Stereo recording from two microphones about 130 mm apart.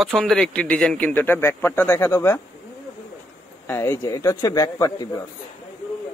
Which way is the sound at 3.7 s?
20° left (ahead or behind).